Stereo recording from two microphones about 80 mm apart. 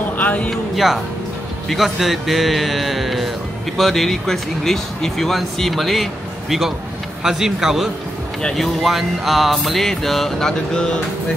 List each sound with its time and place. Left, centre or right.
0.2 s a sound: centre
0.5 s speech: centre
7.2 s speech: centre
8.4 s speech: centre